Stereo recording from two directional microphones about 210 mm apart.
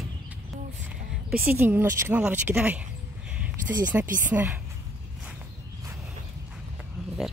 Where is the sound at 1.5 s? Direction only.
10° right (ahead or behind).